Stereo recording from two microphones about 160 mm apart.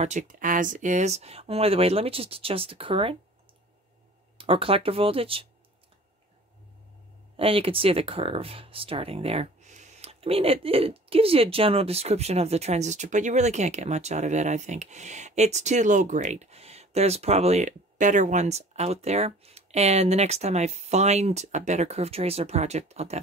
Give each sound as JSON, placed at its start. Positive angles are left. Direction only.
{"t": 0.0, "sound": "speech", "side_deg": -50}
{"t": 4.4, "sound": "speech", "side_deg": -35}
{"t": 7.3, "sound": "speech", "side_deg": -35}